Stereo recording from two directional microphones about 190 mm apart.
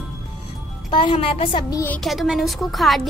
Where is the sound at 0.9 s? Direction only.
25° left (ahead or behind).